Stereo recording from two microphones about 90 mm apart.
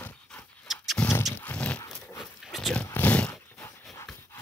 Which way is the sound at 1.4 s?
15° left (ahead or behind).